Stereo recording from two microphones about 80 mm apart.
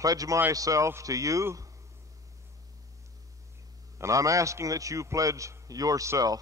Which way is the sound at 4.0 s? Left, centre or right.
Right.